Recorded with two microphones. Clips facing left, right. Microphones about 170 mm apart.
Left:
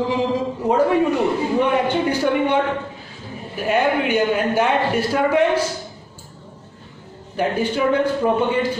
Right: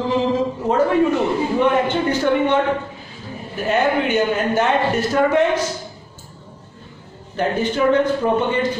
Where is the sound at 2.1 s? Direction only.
10° left (ahead or behind).